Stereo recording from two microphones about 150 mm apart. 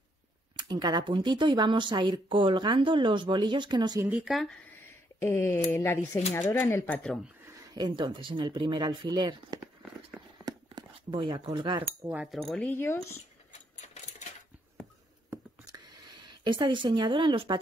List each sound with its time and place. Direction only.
0.6 s speech: 30° right (ahead or behind)
4.1 s speech: 5° right (ahead or behind)
5.2 s speech: 15° left (ahead or behind)
7.6 s a sound: 25° right (ahead or behind)
8.0 s speech: 35° right (ahead or behind)
10.4 s chink: 30° right (ahead or behind)
12.1 s speech: 10° right (ahead or behind)
12.4 s speech: 10° left (ahead or behind)
16.3 s speech: 30° right (ahead or behind)